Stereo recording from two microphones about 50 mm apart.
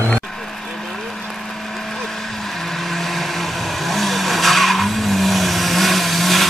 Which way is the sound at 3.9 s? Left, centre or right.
Centre.